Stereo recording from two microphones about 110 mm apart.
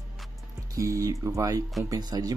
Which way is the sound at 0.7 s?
30° right (ahead or behind).